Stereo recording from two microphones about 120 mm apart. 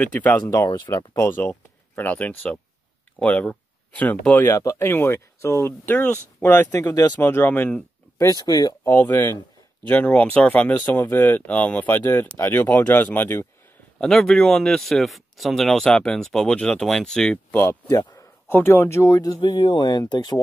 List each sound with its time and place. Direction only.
0.0 s speech: 10° left (ahead or behind)
4.5 s speech: 25° left (ahead or behind)
7.2 s speech: 15° left (ahead or behind)
8.3 s speech: 35° left (ahead or behind)
8.8 s speech: 15° left (ahead or behind)
13.9 s speech: 5° left (ahead or behind); by 20.3 s 35° left (ahead or behind)